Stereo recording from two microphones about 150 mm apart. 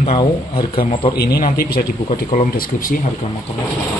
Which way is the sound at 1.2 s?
90° left.